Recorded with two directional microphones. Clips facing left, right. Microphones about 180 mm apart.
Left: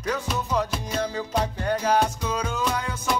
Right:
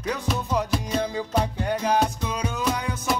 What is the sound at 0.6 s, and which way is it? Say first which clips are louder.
Music: right 1 dB; 15° right (ahead or behind).